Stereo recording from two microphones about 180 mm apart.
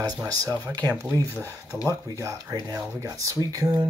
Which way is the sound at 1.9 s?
15° right (ahead or behind).